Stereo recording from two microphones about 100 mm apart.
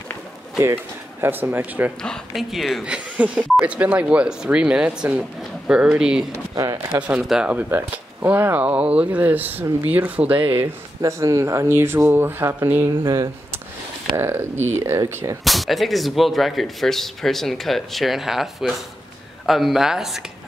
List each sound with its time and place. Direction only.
1.2 s speech: 20° right (ahead or behind)
2.0 s speech: 5° left (ahead or behind)
2.8 s speech: 10° right (ahead or behind)
6.3 s speech: 35° right (ahead or behind)
7.0 s speech: 15° right (ahead or behind)
10.6 s speech: 30° right (ahead or behind)
12.8 s speech: 35° right (ahead or behind)
14.1 s speech: 25° right (ahead or behind)
15.4 s speech: centre (ahead or behind)